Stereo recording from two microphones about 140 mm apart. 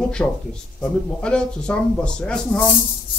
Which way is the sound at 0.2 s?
10° left (ahead or behind).